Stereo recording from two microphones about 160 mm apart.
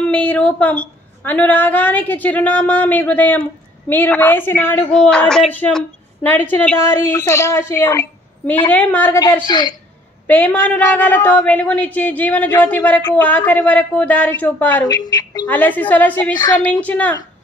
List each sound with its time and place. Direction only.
0.1 s a woman's voice: 10° left (ahead or behind)
9.5 s a woman's voice: 25° left (ahead or behind)
10.2 s a woman's voice: 10° left (ahead or behind)
14.9 s a woman's voice: 25° left (ahead or behind)
15.4 s a woman's voice: 10° left (ahead or behind)